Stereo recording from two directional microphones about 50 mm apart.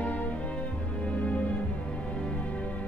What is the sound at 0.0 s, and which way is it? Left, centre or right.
Music, left.